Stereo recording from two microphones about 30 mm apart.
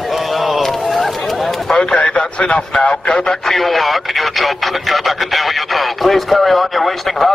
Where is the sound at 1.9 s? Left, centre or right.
Left.